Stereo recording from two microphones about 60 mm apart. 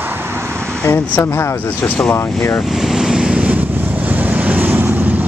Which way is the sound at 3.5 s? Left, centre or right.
Right.